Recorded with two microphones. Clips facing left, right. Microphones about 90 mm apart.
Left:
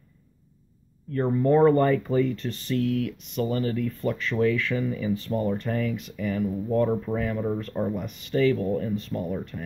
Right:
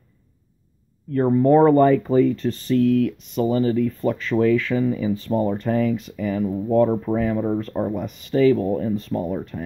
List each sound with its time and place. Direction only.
1.4 s speech: 30° right (ahead or behind)